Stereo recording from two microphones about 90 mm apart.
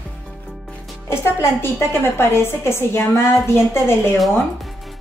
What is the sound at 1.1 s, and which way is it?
A woman's voice, 30° left (ahead or behind).